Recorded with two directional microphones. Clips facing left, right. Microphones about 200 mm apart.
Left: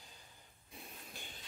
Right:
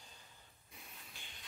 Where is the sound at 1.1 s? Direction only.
45° left (ahead or behind).